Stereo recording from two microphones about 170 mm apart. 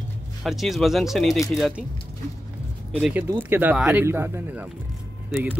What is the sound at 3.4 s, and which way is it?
Speech, 10° right (ahead or behind).